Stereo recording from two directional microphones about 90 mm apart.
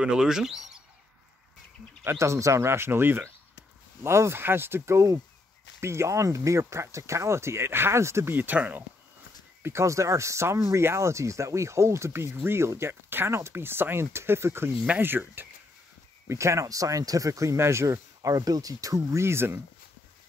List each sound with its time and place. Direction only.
0.0 s speech: 10° right (ahead or behind)
2.0 s speech: 35° right (ahead or behind)
9.6 s speech: 30° right (ahead or behind)
16.3 s speech: 35° right (ahead or behind)